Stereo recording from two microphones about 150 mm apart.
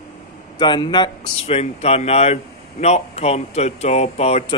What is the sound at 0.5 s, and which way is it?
Speech, 30° left (ahead or behind).